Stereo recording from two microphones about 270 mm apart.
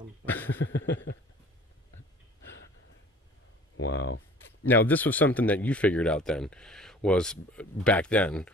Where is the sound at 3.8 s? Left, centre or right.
Left.